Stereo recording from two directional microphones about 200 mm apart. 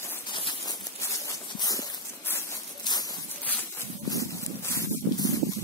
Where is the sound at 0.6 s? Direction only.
15° left (ahead or behind).